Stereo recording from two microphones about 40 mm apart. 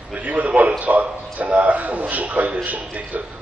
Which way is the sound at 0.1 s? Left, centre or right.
Right.